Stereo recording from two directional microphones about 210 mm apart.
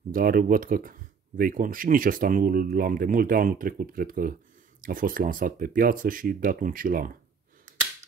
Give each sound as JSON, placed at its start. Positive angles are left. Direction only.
{"t": 0.1, "sound": "speech", "side_deg": -40}